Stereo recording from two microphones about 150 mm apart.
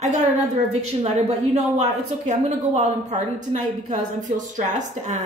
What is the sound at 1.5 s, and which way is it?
A woman's voice, 50° right (ahead or behind).